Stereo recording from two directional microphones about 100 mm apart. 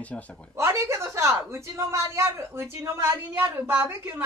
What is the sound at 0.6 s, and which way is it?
A woman's voice, 30° right (ahead or behind).